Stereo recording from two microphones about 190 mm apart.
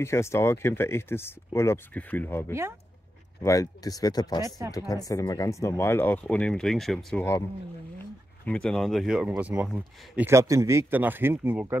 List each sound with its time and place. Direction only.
0.0 s speech: 15° left (ahead or behind)
8.5 s speech: 5° left (ahead or behind)